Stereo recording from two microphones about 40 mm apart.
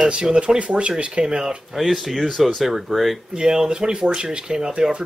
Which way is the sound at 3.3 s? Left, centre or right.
Centre.